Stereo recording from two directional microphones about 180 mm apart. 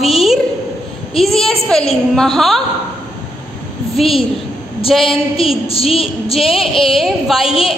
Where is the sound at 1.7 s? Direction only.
5° left (ahead or behind).